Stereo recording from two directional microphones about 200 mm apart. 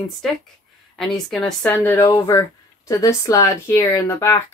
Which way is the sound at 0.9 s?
Centre (ahead or behind).